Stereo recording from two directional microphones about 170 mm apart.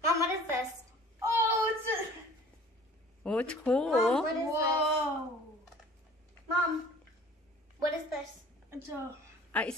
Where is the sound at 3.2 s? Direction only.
5° left (ahead or behind).